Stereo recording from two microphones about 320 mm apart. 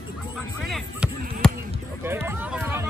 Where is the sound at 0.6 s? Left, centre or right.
Centre.